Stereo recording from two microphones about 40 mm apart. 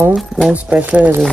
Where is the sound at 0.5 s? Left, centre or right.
Right.